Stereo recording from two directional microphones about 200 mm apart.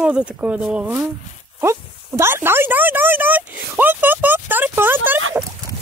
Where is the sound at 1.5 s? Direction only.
15° right (ahead or behind).